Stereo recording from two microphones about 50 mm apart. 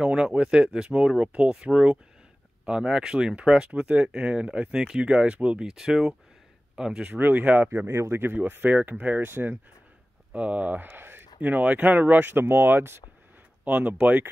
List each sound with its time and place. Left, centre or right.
0.0 s speech: centre
4.7 s speech: centre
5.7 s speech: centre
7.1 s speech: right
7.9 s speech: right
8.3 s speech: right
9.2 s speech: right
10.3 s speech: right
11.4 s speech: right
13.7 s speech: right